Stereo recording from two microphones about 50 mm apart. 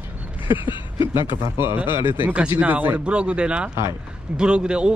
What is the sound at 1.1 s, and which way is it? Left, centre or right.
Speech, right.